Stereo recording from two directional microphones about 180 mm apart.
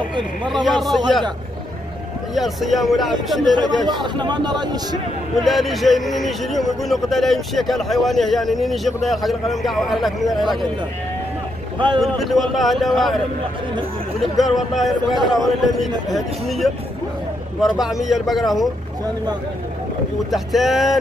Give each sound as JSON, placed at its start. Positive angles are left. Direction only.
{"t": 0.5, "sound": "speech", "side_deg": 0}
{"t": 2.3, "sound": "speech", "side_deg": 0}
{"t": 3.5, "sound": "speech", "side_deg": -25}
{"t": 5.4, "sound": "speech", "side_deg": 0}
{"t": 12.0, "sound": "speech", "side_deg": 0}
{"t": 14.3, "sound": "speech", "side_deg": 0}
{"t": 20.2, "sound": "speech", "side_deg": 0}